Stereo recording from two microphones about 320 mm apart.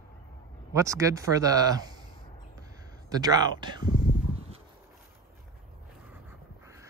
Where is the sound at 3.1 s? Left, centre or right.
Centre.